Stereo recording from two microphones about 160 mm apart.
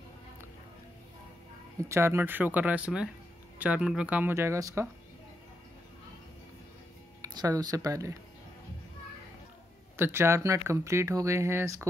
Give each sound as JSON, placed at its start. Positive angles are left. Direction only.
{"t": 1.9, "sound": "speech", "side_deg": -15}
{"t": 7.2, "sound": "speech", "side_deg": -20}
{"t": 9.9, "sound": "speech", "side_deg": -15}